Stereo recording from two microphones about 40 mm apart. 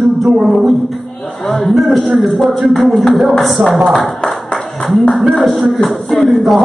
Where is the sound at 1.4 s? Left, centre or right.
Centre.